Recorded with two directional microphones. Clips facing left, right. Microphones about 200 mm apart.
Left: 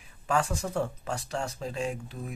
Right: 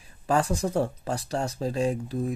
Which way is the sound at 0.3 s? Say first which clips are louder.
Right 4 dB; 35° right (ahead or behind).